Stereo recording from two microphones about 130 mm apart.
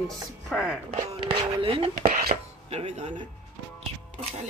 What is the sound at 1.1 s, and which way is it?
Speech, 45° right (ahead or behind).